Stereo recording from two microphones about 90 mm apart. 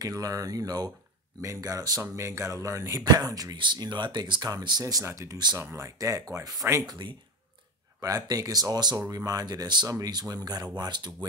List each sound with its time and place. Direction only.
0.0 s speech: 40° right (ahead or behind)
3.0 s speech: 45° right (ahead or behind)
3.5 s speech: 55° right (ahead or behind)
6.9 s speech: 55° right (ahead or behind)
8.0 s speech: 40° right (ahead or behind)